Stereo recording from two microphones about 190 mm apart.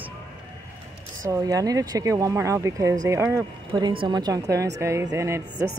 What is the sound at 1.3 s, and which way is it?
A woman's voice, 20° right (ahead or behind).